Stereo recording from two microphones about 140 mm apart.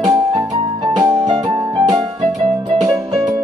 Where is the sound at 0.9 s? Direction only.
25° right (ahead or behind).